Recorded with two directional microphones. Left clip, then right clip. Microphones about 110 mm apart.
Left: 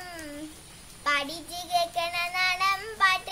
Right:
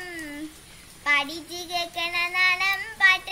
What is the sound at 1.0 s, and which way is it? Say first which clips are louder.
Child singing: right 4 dB; 45° left (ahead or behind).